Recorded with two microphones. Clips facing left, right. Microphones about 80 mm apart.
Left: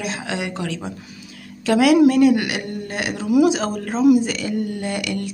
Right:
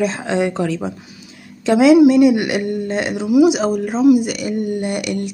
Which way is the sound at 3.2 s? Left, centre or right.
Centre.